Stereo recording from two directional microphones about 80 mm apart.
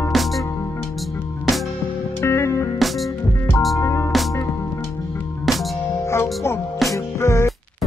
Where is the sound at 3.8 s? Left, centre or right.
Left.